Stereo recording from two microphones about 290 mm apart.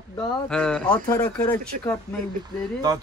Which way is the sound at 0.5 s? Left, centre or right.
Centre.